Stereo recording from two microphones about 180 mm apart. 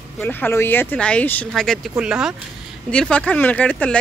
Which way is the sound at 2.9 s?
5° left (ahead or behind).